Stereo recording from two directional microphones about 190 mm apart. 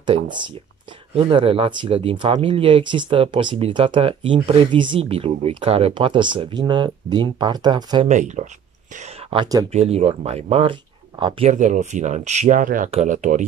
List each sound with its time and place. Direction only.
0.0 s speech: 25° right (ahead or behind)
8.1 s speech: 40° right (ahead or behind)
9.3 s speech: 20° right (ahead or behind)
9.7 s speech: 30° right (ahead or behind)
11.5 s speech: 40° right (ahead or behind)